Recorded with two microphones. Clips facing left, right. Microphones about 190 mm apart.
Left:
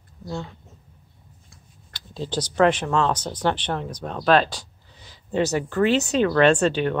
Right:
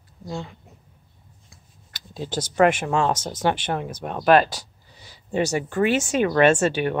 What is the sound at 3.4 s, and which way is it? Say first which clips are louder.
Speech: right 1 dB; 10° right (ahead or behind).